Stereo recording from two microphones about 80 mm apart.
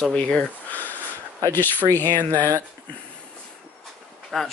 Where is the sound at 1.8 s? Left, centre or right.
Right.